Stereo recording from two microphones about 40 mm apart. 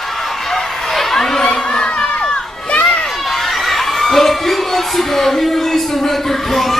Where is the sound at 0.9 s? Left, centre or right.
Centre.